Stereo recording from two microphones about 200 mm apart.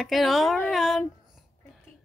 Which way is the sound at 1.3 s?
Centre (ahead or behind).